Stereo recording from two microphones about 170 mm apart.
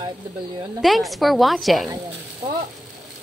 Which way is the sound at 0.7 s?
Centre (ahead or behind).